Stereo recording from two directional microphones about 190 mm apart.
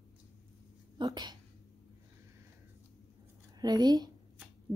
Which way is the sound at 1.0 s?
20° right (ahead or behind).